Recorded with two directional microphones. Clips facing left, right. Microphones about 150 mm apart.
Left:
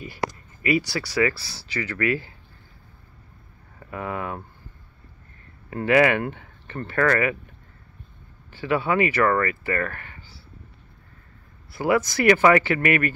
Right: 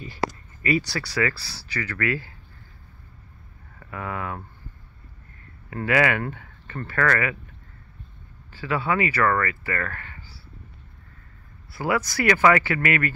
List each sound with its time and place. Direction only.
0.0 s a sound: 10° left (ahead or behind)
1.1 s speech: 15° left (ahead or behind)
3.8 s speech: 20° left (ahead or behind)
5.7 s speech: 25° left (ahead or behind)
8.5 s speech: 20° left (ahead or behind)
11.7 s speech: 20° left (ahead or behind)